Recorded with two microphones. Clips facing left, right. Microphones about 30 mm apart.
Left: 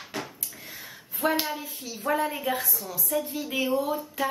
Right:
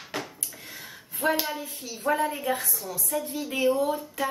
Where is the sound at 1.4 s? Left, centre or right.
Centre.